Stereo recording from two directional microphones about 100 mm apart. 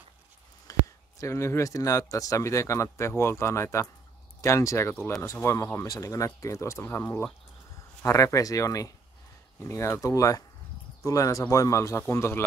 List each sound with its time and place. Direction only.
0.7 s speech: 35° left (ahead or behind)